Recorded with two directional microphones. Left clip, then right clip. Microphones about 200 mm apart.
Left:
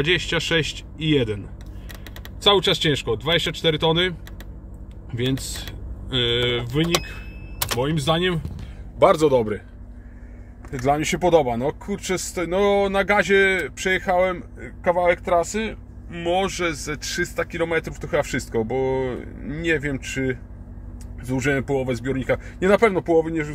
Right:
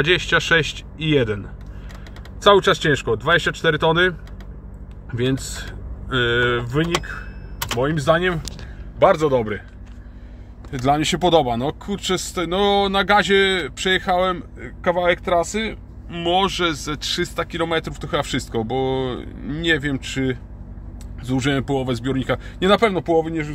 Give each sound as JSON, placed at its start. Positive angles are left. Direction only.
{"t": 0.3, "sound": "speech", "side_deg": 0}
{"t": 2.4, "sound": "a man's voice", "side_deg": -5}
{"t": 10.7, "sound": "speech", "side_deg": -20}
{"t": 12.8, "sound": "speech", "side_deg": -10}
{"t": 16.4, "sound": "speech", "side_deg": -25}
{"t": 22.0, "sound": "speech", "side_deg": -15}